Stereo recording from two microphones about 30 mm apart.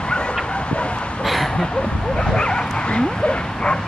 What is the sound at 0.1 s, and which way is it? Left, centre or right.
Dog, left.